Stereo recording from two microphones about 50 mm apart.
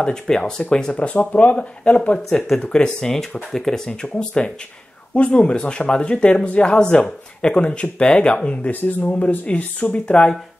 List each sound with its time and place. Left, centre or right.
0.0 s speech: centre
8.6 s speech: left; by 10.3 s centre